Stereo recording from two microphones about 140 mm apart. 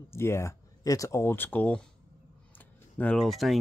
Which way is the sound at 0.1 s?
20° left (ahead or behind).